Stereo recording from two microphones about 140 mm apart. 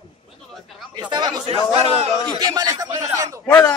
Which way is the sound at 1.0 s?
30° right (ahead or behind).